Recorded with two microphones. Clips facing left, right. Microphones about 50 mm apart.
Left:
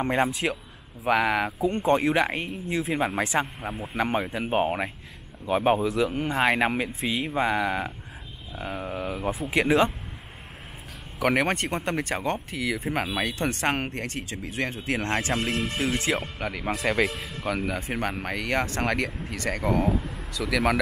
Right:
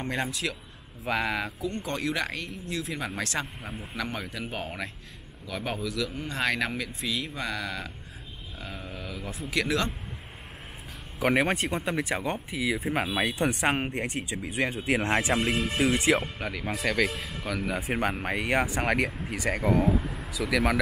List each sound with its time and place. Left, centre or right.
0.0 s speech: left
1.6 s speech: left
3.6 s speech: centre
3.9 s speech: left
11.1 s speech: centre
17.7 s speech: centre